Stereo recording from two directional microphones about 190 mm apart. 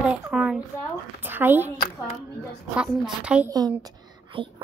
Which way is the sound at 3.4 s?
20° right (ahead or behind).